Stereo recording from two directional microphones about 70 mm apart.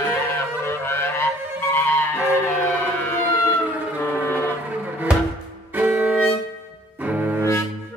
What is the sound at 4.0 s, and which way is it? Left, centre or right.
Music, left.